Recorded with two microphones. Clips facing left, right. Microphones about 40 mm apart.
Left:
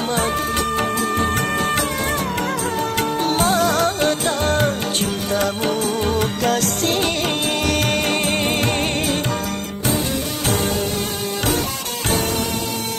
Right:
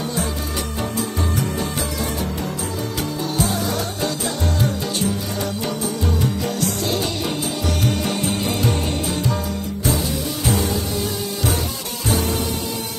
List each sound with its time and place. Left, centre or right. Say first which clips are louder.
0.0 s music: left 5 dB; left
3.0 s music: left 3 dB; left